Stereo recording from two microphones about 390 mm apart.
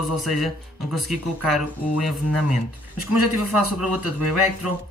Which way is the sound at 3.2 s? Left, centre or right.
Left.